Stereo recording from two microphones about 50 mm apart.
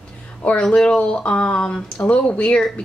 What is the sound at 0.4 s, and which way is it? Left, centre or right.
Speech, left.